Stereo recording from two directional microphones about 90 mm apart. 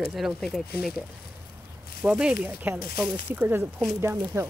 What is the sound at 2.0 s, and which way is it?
Speech, 15° right (ahead or behind).